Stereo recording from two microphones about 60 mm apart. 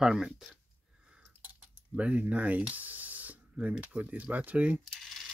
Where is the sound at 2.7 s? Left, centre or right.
Right.